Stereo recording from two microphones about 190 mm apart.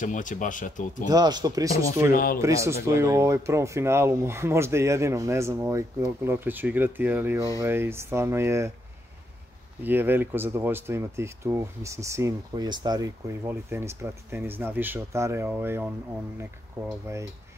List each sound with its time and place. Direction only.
0.0 s speech: 40° left (ahead or behind)
1.0 s speech: 20° right (ahead or behind)
9.8 s speech: 10° right (ahead or behind)
17.1 s speech: 15° right (ahead or behind)